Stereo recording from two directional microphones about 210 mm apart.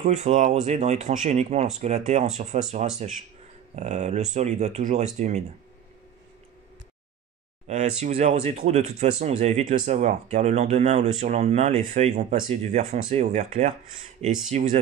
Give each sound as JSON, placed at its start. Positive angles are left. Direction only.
{"t": 0.0, "sound": "speech", "side_deg": -35}
{"t": 7.6, "sound": "speech", "side_deg": -30}